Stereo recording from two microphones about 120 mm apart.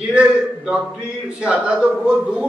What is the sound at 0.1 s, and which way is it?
A man's voice, 10° right (ahead or behind).